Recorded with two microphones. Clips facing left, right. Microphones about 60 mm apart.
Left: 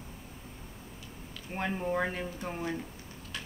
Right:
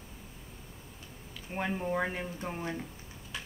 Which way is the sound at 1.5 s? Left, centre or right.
Centre.